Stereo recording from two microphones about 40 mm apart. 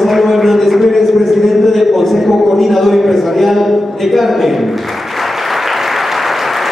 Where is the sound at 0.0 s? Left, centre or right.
Centre.